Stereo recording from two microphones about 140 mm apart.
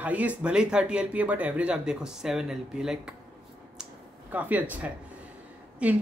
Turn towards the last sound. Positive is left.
turn(degrees=-10)  # may be behind; listen again after turning